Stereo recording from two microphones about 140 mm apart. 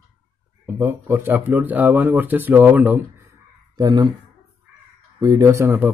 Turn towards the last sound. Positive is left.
turn(degrees=-15)  # may be behind; listen again after turning